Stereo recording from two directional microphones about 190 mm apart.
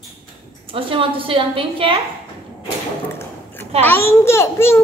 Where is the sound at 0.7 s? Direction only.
30° right (ahead or behind).